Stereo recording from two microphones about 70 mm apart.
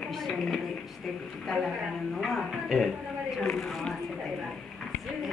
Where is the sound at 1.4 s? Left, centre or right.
Centre.